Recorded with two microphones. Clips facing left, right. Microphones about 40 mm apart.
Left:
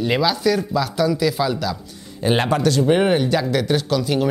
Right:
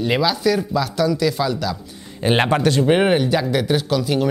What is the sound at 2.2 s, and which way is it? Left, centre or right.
Speech, right.